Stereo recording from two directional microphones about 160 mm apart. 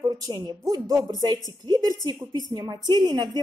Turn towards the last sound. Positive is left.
turn(degrees=-25)  # may be behind; listen again after turning